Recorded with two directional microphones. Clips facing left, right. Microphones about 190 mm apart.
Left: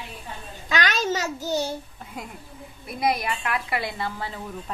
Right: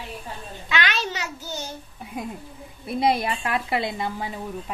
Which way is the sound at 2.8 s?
30° right (ahead or behind).